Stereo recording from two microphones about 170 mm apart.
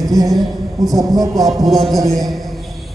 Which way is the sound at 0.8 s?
Centre (ahead or behind).